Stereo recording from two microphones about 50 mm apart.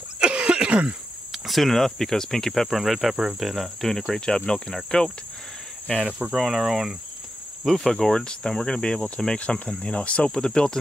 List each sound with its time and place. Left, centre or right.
0.2 s cough: centre
1.3 s speech: centre
6.0 s speech: centre
8.1 s speech: centre